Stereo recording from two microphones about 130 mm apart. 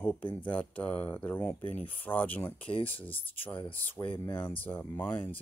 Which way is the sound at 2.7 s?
45° left (ahead or behind).